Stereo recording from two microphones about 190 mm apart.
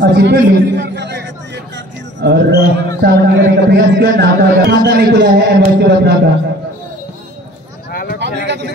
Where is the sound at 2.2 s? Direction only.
60° right (ahead or behind).